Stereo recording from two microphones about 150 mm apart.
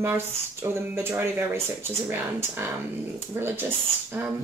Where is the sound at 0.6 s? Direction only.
15° right (ahead or behind).